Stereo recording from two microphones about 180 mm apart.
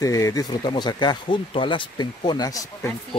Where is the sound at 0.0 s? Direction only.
20° left (ahead or behind).